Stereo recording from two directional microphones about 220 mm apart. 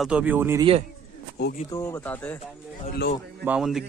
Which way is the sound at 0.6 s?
25° right (ahead or behind).